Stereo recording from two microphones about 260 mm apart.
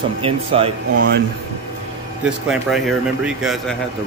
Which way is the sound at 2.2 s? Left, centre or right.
Centre.